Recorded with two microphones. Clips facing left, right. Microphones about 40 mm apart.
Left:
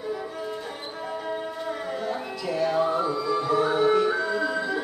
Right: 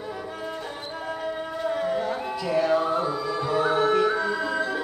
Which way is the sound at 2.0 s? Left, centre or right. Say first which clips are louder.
Right 3 dB; centre.